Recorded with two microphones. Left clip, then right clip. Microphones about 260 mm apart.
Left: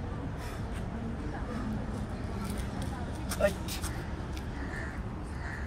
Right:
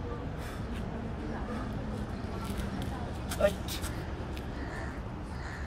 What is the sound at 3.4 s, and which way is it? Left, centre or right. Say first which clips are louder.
Speech: right 1 dB; centre.